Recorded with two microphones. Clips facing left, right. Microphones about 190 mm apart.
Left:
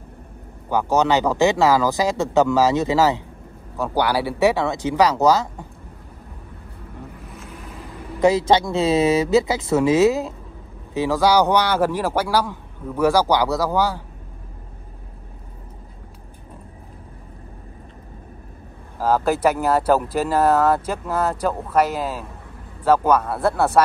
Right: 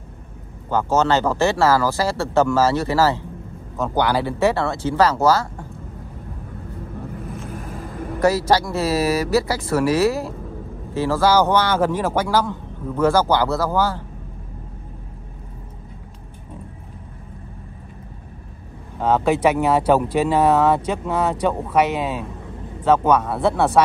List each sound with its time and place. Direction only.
0.7 s speech: 15° left (ahead or behind)
7.2 s vehicle: 55° right (ahead or behind)
8.2 s speech: 20° left (ahead or behind)
18.9 s speech: centre (ahead or behind)